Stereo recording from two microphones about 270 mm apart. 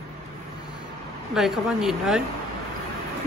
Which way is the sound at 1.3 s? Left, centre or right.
Centre.